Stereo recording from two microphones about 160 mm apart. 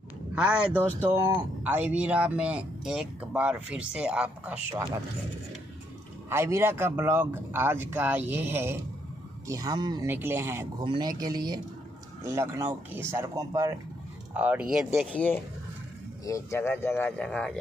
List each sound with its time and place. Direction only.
0.3 s speech: 5° right (ahead or behind)
6.2 s speech: 15° right (ahead or behind)
10.0 s speech: 15° right (ahead or behind)
10.8 s speech: 25° right (ahead or behind)
14.3 s speech: 10° right (ahead or behind)
15.0 s speech: 10° left (ahead or behind)
16.3 s speech: 20° left (ahead or behind)